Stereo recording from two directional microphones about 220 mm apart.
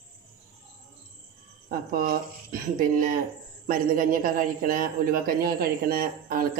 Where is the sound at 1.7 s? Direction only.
40° right (ahead or behind).